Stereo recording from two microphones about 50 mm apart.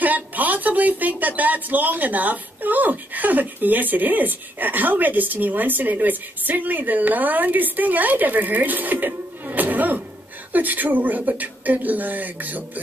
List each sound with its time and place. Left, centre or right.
0.0 s speech: right